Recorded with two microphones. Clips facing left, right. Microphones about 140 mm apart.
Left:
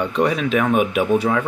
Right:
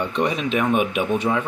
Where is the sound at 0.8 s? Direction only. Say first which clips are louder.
Left 3 dB; 45° left (ahead or behind).